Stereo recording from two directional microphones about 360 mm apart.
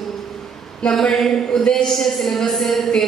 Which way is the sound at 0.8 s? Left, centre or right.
Centre.